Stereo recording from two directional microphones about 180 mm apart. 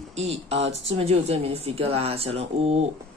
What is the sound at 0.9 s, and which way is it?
A woman's voice, 35° right (ahead or behind).